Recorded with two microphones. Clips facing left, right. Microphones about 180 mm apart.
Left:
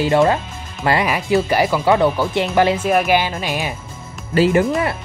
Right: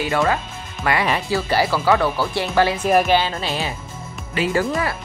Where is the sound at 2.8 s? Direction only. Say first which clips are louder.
Even; centre (ahead or behind).